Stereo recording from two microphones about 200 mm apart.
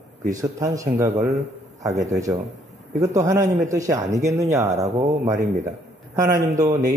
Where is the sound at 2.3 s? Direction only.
10° right (ahead or behind).